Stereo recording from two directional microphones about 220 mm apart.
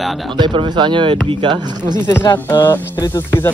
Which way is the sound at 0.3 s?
20° right (ahead or behind).